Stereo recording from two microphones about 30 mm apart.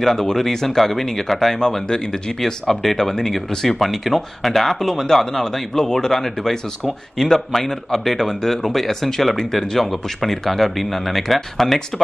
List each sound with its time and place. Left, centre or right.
0.0 s speech: centre
1.6 s a man's voice: left